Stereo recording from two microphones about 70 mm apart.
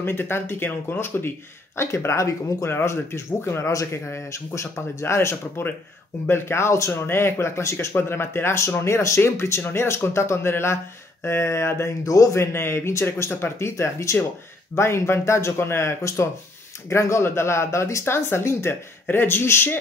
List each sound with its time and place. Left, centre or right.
0.0 s speech: left
1.8 s speech: left